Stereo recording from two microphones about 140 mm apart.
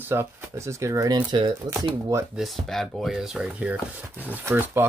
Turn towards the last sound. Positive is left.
turn(degrees=-15)  # may be behind; listen again after turning